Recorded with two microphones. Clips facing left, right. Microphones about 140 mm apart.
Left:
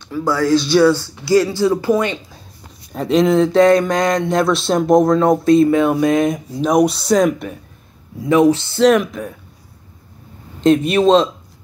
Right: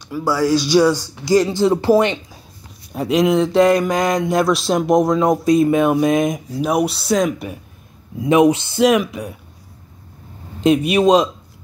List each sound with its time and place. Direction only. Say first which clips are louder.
0.1 s speech: left 1 dB; 10° right (ahead or behind); by 2.1 s 25° right (ahead or behind)
2.9 s speech: left 2 dB; 5° right (ahead or behind)
6.6 s speech: left 4 dB; 5° right (ahead or behind)
8.2 s speech: even; 15° right (ahead or behind)
10.6 s speech: left 1 dB; 10° right (ahead or behind)